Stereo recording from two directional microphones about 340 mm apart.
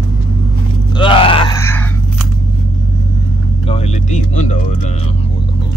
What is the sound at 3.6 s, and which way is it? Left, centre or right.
Music, centre.